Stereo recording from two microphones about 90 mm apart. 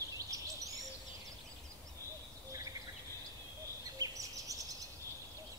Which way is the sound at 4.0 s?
40° right (ahead or behind).